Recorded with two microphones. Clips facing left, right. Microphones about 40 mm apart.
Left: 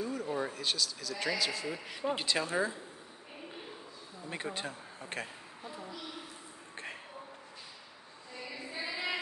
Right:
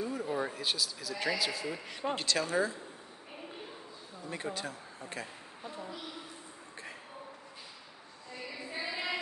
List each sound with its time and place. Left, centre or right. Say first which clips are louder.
0.0 s speech: right 1 dB; centre
2.1 s speech: right 2 dB; centre
4.6 s speech: even; left
5.8 s a sound: right 2 dB; centre
8.5 s female singing: right 1 dB; centre